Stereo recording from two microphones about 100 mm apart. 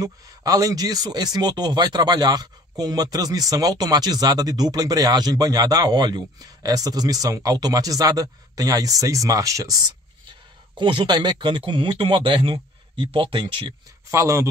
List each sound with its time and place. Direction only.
0.0 s speech: 35° right (ahead or behind)
10.8 s speech: 55° right (ahead or behind)
14.1 s speech: 30° right (ahead or behind)